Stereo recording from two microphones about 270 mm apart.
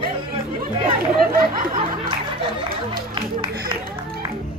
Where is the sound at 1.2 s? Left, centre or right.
Right.